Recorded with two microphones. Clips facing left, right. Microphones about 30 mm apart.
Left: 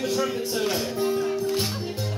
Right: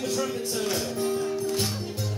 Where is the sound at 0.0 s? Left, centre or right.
Centre.